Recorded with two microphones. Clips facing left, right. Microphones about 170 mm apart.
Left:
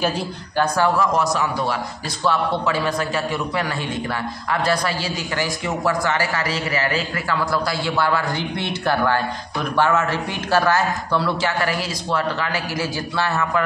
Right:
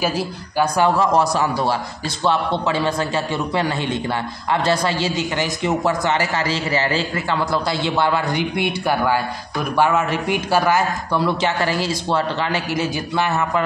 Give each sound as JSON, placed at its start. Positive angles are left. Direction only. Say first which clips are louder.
{"t": 0.0, "sound": "speech", "louder": "right 1 dB", "side_deg": -5}
{"t": 0.7, "sound": "a man's voice", "louder": "right 3 dB", "side_deg": -25}